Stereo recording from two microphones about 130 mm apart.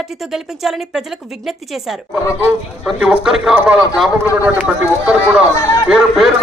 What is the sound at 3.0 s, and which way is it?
A man's voice, 5° right (ahead or behind).